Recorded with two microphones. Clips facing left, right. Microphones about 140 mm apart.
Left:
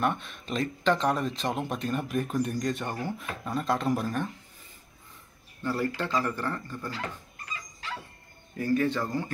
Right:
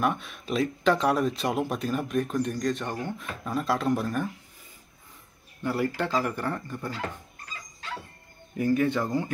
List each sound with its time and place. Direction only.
0.0 s speech: 5° right (ahead or behind)
5.6 s speech: 15° right (ahead or behind)
8.5 s speech: 15° right (ahead or behind)